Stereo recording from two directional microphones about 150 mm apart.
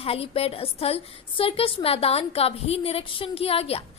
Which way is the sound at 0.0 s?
40° left (ahead or behind).